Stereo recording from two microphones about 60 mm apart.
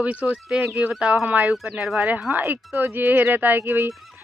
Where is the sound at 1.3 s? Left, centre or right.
Centre.